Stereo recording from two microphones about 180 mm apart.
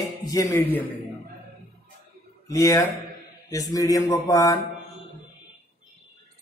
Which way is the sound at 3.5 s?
20° left (ahead or behind).